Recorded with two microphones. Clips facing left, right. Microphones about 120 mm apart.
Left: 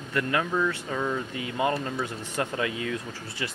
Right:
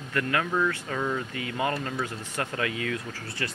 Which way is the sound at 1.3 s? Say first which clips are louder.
Left 2 dB; 20° left (ahead or behind).